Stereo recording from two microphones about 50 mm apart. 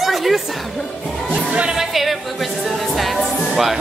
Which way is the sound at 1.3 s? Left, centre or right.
Centre.